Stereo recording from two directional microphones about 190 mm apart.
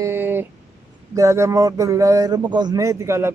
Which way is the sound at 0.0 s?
10° right (ahead or behind).